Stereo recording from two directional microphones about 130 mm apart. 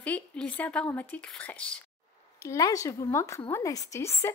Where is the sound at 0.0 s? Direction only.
10° left (ahead or behind).